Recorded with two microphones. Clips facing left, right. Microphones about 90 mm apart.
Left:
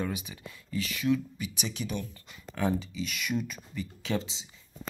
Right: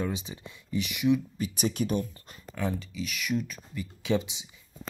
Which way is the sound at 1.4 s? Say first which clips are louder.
Right 7 dB; 40° right (ahead or behind).